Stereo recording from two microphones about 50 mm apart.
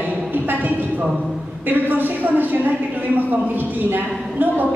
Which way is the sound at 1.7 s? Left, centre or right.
Right.